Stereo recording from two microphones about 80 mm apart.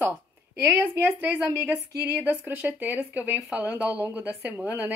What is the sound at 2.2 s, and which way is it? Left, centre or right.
Speech, right.